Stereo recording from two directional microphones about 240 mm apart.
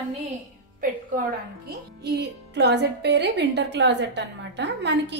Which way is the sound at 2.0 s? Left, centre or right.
Right.